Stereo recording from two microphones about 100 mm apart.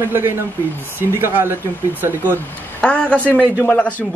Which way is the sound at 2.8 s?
10° left (ahead or behind).